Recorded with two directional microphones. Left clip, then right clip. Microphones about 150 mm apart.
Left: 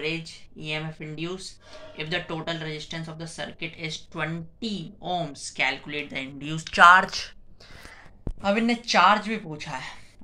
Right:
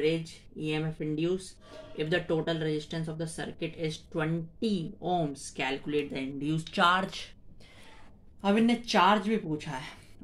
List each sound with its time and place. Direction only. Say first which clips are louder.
0.7 s speech: even; 40° right (ahead or behind); by 7.1 s 20° right (ahead or behind)
8.4 s speech: left 3 dB; 25° right (ahead or behind)